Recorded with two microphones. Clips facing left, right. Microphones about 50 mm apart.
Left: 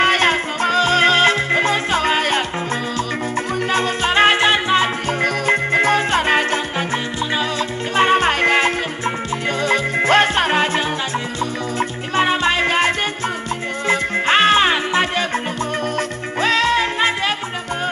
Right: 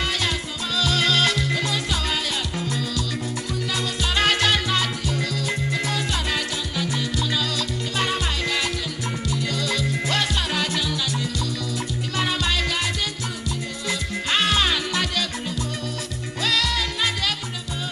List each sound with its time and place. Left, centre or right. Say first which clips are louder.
0.0 s music: left 10 dB; left
3.7 s music: left 9 dB; left
5.2 s music: left 9 dB; left
7.9 s music: left 12 dB; left
12.2 s music: left 8 dB; left
16.3 s music: left 8 dB; left